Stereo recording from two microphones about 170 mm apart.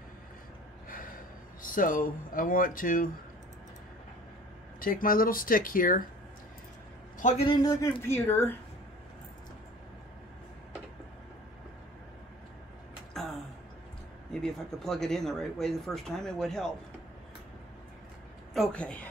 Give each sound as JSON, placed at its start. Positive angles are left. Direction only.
{"t": 0.8, "sound": "gasp", "side_deg": 55}
{"t": 1.6, "sound": "speech", "side_deg": 50}
{"t": 4.7, "sound": "speech", "side_deg": 55}
{"t": 7.2, "sound": "a man's voice", "side_deg": 45}
{"t": 7.4, "sound": "speech", "side_deg": 20}
{"t": 13.1, "sound": "a sound", "side_deg": 0}
{"t": 14.3, "sound": "speech", "side_deg": 5}
{"t": 18.5, "sound": "speech", "side_deg": 5}